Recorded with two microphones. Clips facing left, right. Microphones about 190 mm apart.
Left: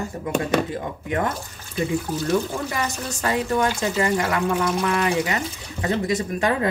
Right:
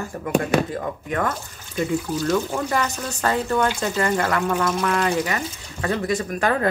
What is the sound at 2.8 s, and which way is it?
Speech, 15° left (ahead or behind).